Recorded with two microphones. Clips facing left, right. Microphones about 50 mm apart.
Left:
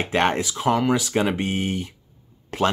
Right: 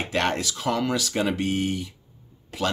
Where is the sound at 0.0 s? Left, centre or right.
Left.